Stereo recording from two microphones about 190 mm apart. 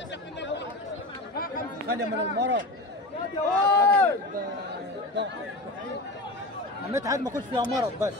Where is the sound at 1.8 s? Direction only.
60° right (ahead or behind).